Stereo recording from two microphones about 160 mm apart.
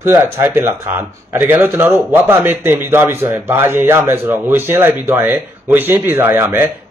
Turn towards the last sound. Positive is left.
turn(degrees=-15)  # may be behind; listen again after turning